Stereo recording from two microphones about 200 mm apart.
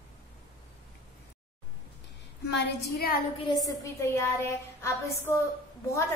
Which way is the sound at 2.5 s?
55° left (ahead or behind).